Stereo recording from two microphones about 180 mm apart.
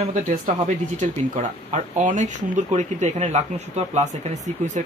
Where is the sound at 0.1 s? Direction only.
45° right (ahead or behind).